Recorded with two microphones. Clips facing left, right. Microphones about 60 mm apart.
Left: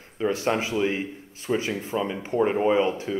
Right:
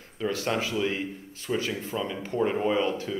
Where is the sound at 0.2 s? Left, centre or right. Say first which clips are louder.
Left 4 dB; left.